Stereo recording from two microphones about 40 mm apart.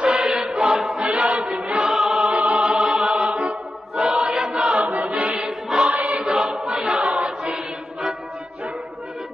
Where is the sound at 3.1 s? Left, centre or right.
Right.